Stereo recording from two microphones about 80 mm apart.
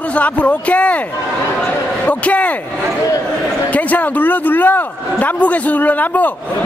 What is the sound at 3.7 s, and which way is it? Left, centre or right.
A man's voice, centre.